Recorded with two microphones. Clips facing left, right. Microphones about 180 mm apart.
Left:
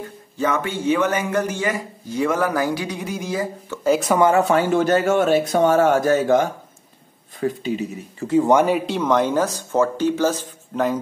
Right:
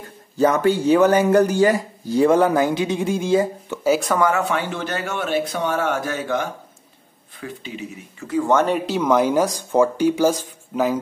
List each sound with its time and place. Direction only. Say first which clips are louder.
0.4 s a man's voice: right 6 dB; 35° right (ahead or behind)
3.8 s speech: even; 5° right (ahead or behind)
4.2 s speech: left 4 dB; 35° left (ahead or behind)
8.3 s speech: left 2 dB; 20° left (ahead or behind); by 11.0 s 10° right (ahead or behind)